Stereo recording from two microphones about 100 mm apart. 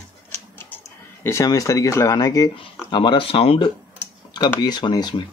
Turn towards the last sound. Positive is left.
turn(degrees=50)  # may be behind; listen again after turning